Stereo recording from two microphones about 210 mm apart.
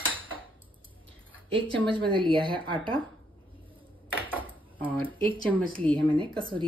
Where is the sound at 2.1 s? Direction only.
25° right (ahead or behind).